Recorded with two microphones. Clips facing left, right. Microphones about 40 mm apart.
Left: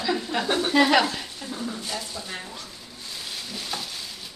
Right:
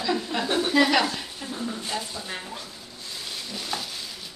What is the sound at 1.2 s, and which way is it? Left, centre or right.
Speech, centre.